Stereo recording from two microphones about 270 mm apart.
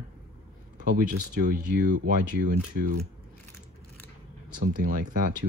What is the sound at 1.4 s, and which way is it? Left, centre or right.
Speech, right.